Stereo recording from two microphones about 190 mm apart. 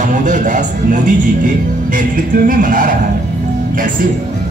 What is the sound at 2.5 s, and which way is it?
Speech, 45° right (ahead or behind).